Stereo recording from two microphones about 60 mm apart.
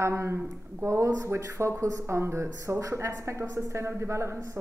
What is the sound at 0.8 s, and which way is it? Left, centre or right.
Speech, right.